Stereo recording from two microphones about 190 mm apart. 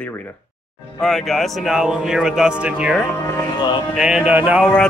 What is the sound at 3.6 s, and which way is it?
Music, 25° left (ahead or behind).